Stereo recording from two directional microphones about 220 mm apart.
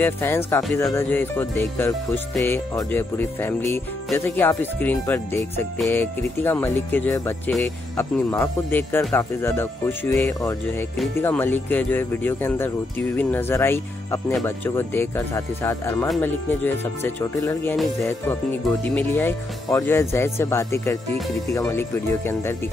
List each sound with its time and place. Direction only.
0.0 s speech: 10° left (ahead or behind)